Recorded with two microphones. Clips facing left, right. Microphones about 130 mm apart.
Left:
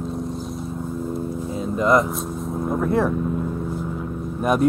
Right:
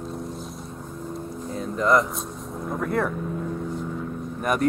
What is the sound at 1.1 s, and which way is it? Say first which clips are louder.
Vehicle: left 5 dB; 5° left (ahead or behind).